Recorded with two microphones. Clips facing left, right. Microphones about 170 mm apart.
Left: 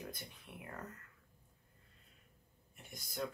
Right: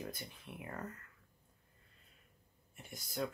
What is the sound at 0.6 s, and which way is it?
Speech, centre (ahead or behind).